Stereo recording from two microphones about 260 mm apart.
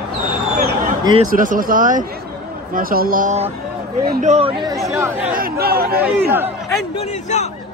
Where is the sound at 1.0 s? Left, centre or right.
Centre.